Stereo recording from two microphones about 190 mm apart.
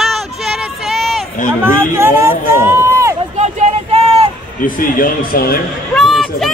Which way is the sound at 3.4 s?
35° right (ahead or behind).